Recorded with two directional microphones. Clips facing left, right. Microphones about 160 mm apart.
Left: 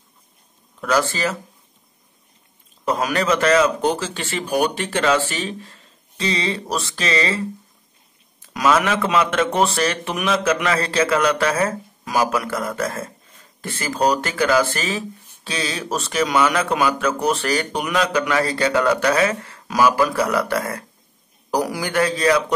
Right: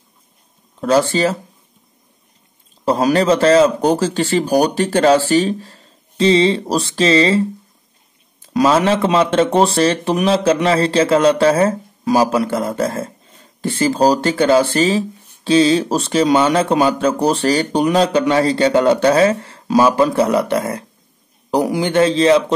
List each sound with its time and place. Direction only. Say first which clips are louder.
0.7 s speech: right 6 dB; 30° right (ahead or behind)
2.8 s speech: right 7 dB; 30° right (ahead or behind)